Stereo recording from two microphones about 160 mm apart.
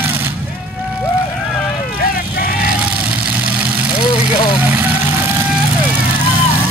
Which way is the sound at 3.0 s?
10° right (ahead or behind).